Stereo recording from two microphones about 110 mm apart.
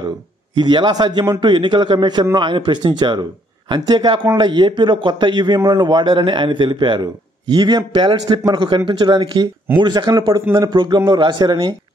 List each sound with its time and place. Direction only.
0.6 s a man's voice: 40° right (ahead or behind)